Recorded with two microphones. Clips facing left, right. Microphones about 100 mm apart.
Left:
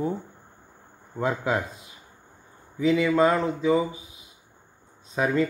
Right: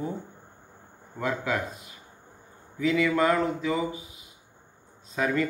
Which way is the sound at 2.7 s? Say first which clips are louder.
Left 3 dB; 25° left (ahead or behind).